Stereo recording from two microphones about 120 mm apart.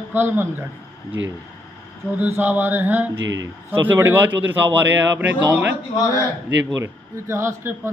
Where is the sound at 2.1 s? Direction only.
20° right (ahead or behind).